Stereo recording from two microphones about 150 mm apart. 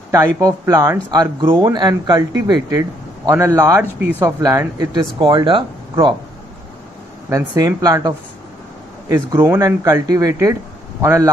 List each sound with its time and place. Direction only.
0.1 s a man's voice: 25° right (ahead or behind)
5.2 s speech: 35° right (ahead or behind)
7.2 s a man's voice: 20° right (ahead or behind)
9.1 s a man's voice: 20° right (ahead or behind)